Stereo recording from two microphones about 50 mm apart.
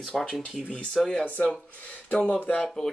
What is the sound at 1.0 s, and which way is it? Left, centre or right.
Speech, centre.